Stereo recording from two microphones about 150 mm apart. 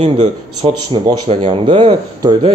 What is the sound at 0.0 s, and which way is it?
Speech, 40° right (ahead or behind).